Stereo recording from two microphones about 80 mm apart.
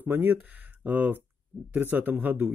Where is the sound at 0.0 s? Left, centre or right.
Right.